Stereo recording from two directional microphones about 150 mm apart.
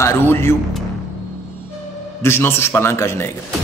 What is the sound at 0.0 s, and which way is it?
Speech, 15° left (ahead or behind).